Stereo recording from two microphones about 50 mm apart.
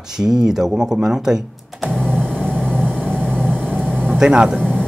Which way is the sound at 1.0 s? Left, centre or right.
Centre.